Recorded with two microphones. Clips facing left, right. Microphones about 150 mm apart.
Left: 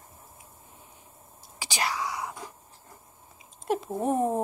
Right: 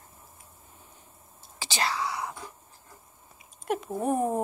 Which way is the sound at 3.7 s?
30° left (ahead or behind).